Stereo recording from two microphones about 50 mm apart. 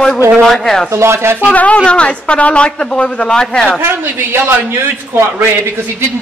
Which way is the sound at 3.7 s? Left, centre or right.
Right.